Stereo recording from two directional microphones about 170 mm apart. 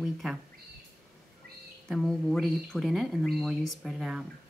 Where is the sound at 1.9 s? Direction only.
Centre (ahead or behind).